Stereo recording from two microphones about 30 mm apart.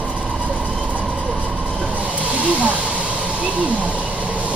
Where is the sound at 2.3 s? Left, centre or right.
Right.